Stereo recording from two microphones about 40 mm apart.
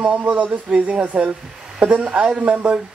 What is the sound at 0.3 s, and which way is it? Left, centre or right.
Speech, right.